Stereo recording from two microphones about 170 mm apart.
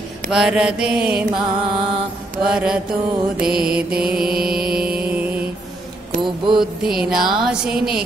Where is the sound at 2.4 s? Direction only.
5° right (ahead or behind).